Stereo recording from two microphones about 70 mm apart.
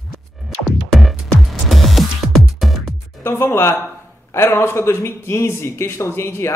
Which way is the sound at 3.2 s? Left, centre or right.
Left.